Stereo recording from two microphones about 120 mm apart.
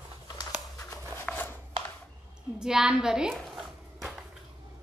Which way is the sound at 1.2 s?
15° left (ahead or behind).